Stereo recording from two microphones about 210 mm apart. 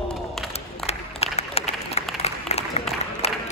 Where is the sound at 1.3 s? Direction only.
30° left (ahead or behind).